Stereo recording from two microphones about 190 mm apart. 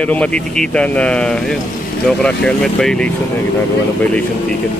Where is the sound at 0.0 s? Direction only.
5° left (ahead or behind).